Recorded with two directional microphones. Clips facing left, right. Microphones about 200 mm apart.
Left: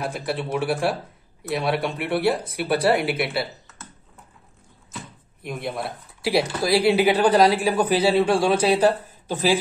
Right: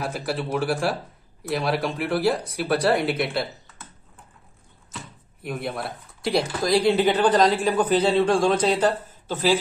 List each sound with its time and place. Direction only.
0.0 s speech: centre (ahead or behind)
5.4 s speech: centre (ahead or behind)